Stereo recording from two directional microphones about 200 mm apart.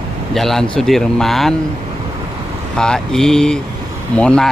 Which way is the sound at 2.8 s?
5° left (ahead or behind).